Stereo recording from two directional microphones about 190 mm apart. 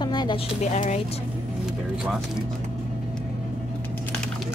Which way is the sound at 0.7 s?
35° left (ahead or behind).